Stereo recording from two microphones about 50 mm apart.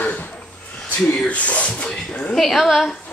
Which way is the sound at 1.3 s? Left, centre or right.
Left.